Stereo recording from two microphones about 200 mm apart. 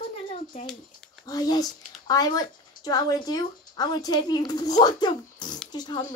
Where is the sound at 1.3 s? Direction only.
20° left (ahead or behind).